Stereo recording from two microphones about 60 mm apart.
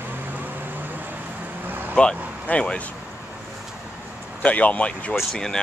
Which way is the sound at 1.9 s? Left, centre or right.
Centre.